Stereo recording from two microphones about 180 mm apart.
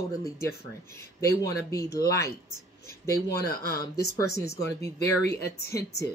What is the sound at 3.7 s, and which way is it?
Speech, 60° left (ahead or behind).